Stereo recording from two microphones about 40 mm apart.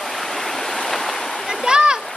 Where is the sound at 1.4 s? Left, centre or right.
Centre.